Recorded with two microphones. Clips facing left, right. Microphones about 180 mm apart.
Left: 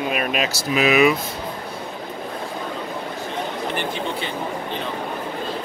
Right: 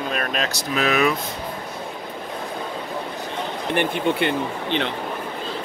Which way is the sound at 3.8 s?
65° right (ahead or behind).